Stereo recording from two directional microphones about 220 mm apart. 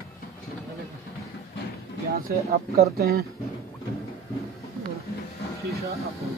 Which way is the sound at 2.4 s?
45° right (ahead or behind).